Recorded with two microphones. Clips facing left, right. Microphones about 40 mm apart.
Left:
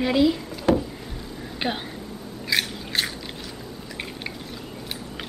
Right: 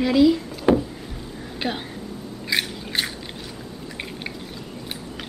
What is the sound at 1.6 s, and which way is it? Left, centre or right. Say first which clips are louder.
Speech: even; centre.